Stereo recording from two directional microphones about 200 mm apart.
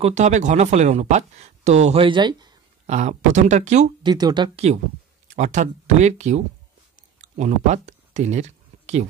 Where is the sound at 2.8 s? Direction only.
35° right (ahead or behind).